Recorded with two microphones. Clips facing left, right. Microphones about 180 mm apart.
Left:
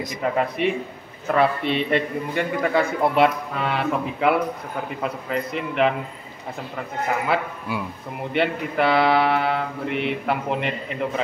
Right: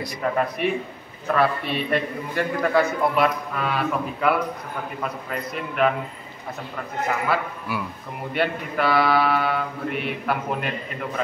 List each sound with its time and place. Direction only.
0.0 s a man's voice: 20° left (ahead or behind)
7.2 s a man's voice: 20° left (ahead or behind)